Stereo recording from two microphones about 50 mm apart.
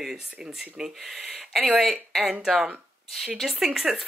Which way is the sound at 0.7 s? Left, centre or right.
Centre.